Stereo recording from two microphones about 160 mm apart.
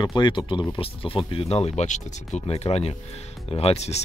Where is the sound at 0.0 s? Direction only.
30° left (ahead or behind).